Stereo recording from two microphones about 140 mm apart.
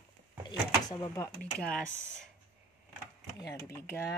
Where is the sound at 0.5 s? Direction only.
35° left (ahead or behind).